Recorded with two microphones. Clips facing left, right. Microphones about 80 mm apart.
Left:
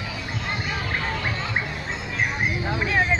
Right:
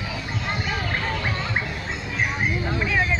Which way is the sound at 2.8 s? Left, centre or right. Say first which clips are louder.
Left 2 dB; centre.